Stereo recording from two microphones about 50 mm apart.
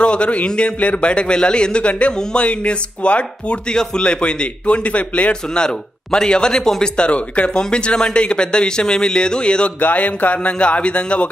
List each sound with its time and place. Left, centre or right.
0.0 s a man's voice: left
9.8 s speech: left